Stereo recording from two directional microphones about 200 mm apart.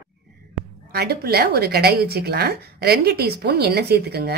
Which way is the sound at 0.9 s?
50° right (ahead or behind).